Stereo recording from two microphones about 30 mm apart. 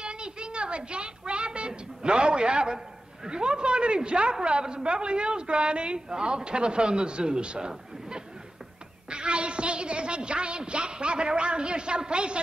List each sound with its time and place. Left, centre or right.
0.0 s music: right
3.3 s a woman's voice: right